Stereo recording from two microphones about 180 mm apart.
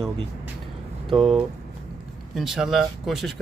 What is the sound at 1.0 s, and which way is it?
Speech, centre (ahead or behind).